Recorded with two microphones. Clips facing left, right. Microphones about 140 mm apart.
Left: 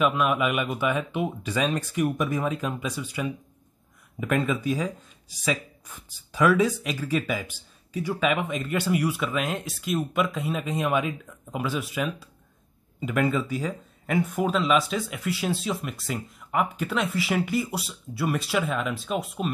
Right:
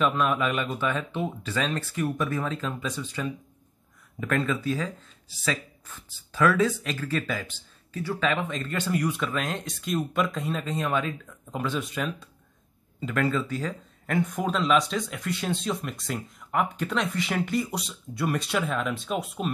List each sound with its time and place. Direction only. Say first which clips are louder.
0.0 s speech: left 1 dB; 10° left (ahead or behind)